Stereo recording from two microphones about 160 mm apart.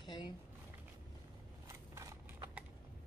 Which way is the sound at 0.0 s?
30° left (ahead or behind).